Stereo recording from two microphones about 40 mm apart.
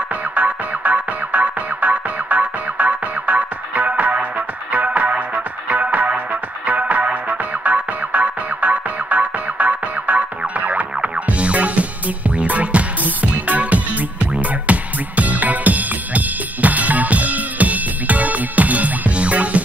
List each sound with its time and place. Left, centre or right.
0.3 s music: right